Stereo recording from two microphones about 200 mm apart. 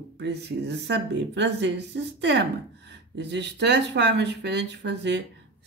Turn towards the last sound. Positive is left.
turn(degrees=-60)  # may be behind; listen again after turning